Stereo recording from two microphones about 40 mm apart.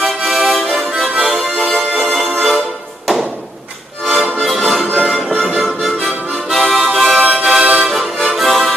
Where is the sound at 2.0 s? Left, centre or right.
Centre.